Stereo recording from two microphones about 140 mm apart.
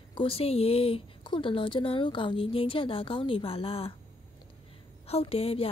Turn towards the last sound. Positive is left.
turn(degrees=45)  # may be behind; listen again after turning